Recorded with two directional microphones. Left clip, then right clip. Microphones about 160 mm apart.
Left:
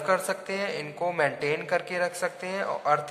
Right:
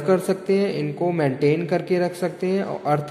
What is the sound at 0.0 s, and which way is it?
Speech, 20° right (ahead or behind).